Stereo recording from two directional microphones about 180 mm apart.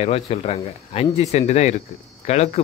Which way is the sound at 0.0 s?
35° left (ahead or behind).